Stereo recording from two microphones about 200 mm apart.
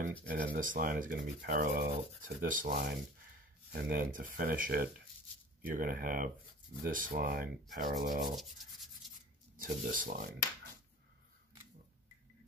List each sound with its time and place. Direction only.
0.2 s speech: 40° right (ahead or behind)
7.8 s rub: 40° right (ahead or behind)
8.2 s rub: centre (ahead or behind)
9.6 s speech: 45° right (ahead or behind)